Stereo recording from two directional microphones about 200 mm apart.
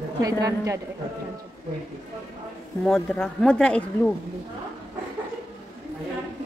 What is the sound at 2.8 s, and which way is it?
Speech, 5° left (ahead or behind).